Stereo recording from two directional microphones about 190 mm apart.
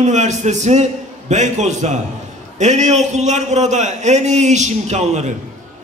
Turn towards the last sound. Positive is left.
turn(degrees=-35)  # may be behind; listen again after turning